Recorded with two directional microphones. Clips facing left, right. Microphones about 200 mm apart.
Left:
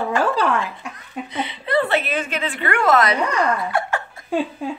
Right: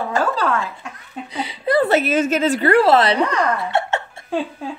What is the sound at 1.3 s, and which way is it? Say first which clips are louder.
A woman's voice: right 3 dB; 35° right (ahead or behind).